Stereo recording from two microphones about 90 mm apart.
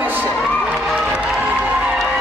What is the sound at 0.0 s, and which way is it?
Crowd, 20° right (ahead or behind).